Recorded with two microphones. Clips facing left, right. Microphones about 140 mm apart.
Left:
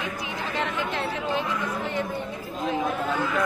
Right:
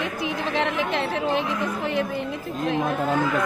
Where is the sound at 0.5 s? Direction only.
90° right.